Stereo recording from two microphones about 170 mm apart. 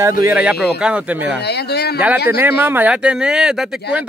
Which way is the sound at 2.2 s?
10° right (ahead or behind).